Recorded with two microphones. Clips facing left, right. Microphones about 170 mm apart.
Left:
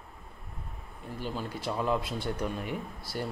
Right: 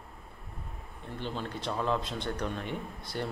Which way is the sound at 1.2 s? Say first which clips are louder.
Left 1 dB; 10° left (ahead or behind).